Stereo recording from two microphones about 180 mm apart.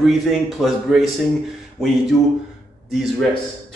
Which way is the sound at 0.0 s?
Centre (ahead or behind).